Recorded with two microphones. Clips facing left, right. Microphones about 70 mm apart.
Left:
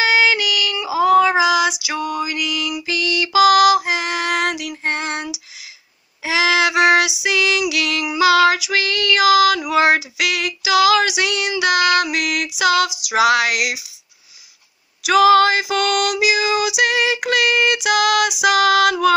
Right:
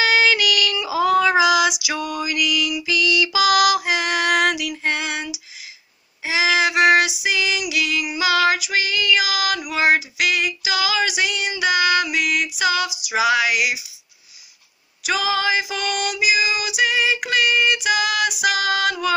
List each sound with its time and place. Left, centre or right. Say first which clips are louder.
0.0 s female singing: left 1 dB; left
5.1 s female singing: left 2 dB; left
6.6 s female singing: even; left
15.0 s female singing: left 9 dB; left